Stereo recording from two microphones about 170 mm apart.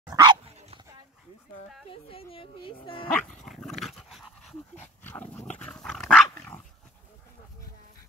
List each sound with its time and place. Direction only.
0.1 s dog: 25° right (ahead or behind)
1.9 s speech: 35° left (ahead or behind)
3.1 s dog: centre (ahead or behind)
5.0 s dog: 10° left (ahead or behind)